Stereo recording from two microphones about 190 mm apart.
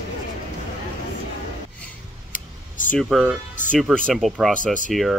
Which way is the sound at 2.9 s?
5° left (ahead or behind).